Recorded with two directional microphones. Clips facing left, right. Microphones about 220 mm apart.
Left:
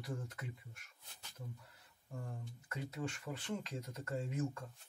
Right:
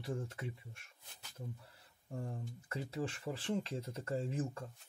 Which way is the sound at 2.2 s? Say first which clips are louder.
Right 4 dB; 30° right (ahead or behind).